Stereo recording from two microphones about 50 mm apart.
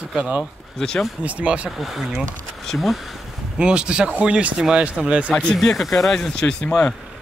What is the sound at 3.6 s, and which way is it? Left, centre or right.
A man's voice, centre.